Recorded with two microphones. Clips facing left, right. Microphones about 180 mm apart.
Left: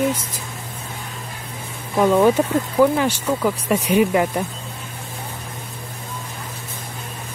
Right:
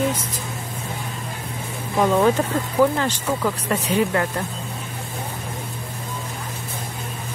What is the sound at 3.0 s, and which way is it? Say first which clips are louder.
Speech: left 3 dB; 10° left (ahead or behind).